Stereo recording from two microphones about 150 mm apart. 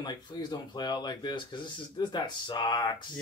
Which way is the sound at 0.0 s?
30° left (ahead or behind).